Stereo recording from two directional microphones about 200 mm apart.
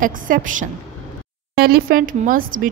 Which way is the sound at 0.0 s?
40° right (ahead or behind).